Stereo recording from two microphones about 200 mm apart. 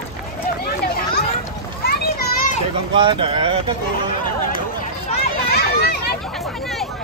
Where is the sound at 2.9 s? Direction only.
25° right (ahead or behind).